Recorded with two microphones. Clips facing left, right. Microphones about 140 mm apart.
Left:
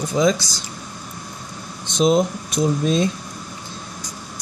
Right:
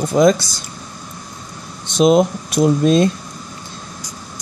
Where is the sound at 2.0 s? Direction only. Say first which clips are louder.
Right 4 dB; 60° right (ahead or behind).